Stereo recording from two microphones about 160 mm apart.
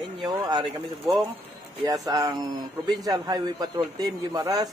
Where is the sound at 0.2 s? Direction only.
25° right (ahead or behind).